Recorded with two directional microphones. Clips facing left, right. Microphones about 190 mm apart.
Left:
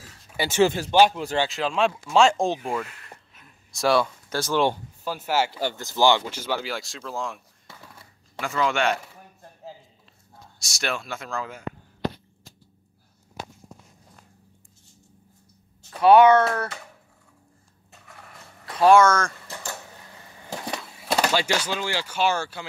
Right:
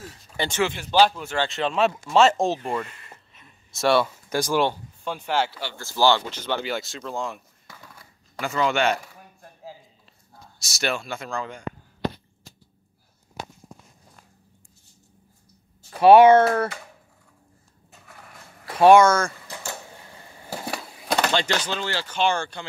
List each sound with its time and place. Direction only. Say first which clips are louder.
0.3 s a sound: even; 10° left (ahead or behind)
0.6 s speech: left 7 dB; 35° left (ahead or behind)
0.9 s speech: even; 15° left (ahead or behind)
1.5 s speech: right 1 dB; centre (ahead or behind)
4.6 s speech: left 2 dB; 5° left (ahead or behind)
7.6 s a sound: even; 25° left (ahead or behind)
8.4 s speech: right 1 dB; centre (ahead or behind)
10.6 s speech: right 2 dB; centre (ahead or behind)
16.0 s speech: right 2 dB; 25° right (ahead or behind)
18.0 s a sound: even; centre (ahead or behind)
18.8 s speech: right 2 dB; 20° right (ahead or behind)
19.0 s speech: right 1 dB; 10° right (ahead or behind)
20.4 s speech: right 1 dB; 5° right (ahead or behind)